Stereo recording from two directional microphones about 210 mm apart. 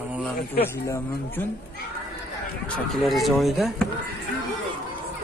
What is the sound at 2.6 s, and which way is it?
A man's voice, centre (ahead or behind).